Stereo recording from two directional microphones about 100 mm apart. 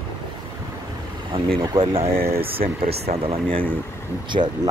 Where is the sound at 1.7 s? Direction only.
75° right (ahead or behind).